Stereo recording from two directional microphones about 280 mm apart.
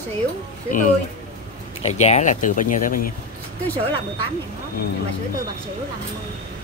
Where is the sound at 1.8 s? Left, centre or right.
Left.